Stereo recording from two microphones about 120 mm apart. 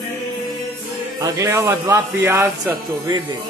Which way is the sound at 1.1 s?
30° right (ahead or behind).